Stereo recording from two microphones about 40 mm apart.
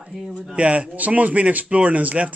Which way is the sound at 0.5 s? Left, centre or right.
Right.